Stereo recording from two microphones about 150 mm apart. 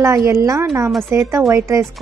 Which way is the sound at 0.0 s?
20° right (ahead or behind).